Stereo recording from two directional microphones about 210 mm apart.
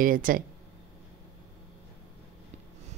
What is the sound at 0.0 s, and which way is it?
Speech, 40° right (ahead or behind).